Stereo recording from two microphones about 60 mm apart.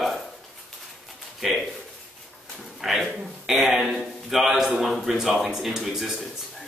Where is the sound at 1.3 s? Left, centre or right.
Centre.